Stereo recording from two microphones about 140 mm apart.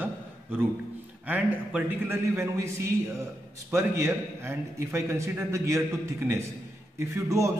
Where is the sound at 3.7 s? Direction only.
20° right (ahead or behind).